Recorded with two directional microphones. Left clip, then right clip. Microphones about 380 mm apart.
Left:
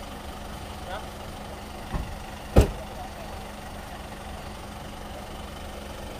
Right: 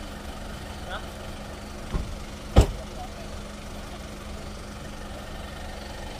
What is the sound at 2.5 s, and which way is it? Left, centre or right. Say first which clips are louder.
Vehicle: left 1 dB; left.